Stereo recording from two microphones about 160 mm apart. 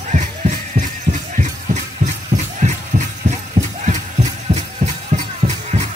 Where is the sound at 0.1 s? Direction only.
50° right (ahead or behind).